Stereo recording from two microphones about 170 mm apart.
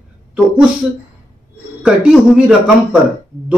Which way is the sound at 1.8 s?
5° right (ahead or behind).